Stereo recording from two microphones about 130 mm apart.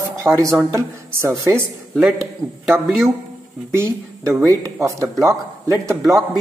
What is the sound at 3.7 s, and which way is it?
Speech, 20° right (ahead or behind).